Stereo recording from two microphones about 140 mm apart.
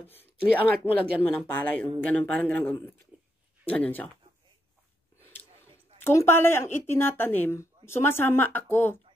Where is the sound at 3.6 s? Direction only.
10° left (ahead or behind).